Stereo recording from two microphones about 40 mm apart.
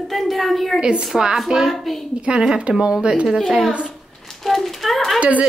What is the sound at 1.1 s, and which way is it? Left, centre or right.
Speech, centre.